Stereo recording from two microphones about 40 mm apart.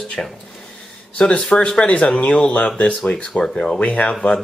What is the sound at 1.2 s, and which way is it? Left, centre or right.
Speech, left.